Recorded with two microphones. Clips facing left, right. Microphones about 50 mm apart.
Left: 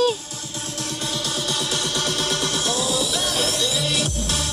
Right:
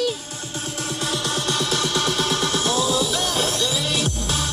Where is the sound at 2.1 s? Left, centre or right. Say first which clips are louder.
Right 2 dB; centre.